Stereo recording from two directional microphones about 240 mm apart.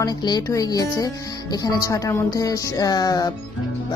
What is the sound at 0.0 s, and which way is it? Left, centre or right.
Speech, centre.